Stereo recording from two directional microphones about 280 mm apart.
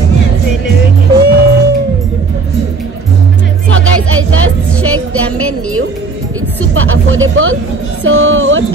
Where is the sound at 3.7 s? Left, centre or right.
Right.